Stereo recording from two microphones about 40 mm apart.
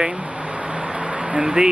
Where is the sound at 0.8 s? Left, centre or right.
Right.